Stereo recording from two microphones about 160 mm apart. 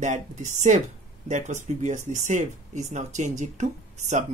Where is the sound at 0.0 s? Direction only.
50° right (ahead or behind).